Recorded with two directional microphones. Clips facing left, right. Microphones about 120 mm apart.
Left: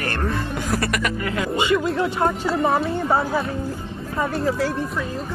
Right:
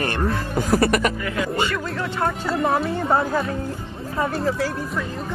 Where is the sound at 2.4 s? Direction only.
Centre (ahead or behind).